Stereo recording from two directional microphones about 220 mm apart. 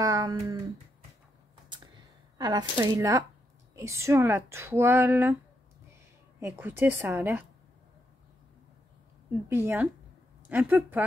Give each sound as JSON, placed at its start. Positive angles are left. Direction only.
{"t": 0.0, "sound": "a sound", "side_deg": -15}
{"t": 2.3, "sound": "speech", "side_deg": -20}
{"t": 6.4, "sound": "speech", "side_deg": -10}
{"t": 9.5, "sound": "speech", "side_deg": -10}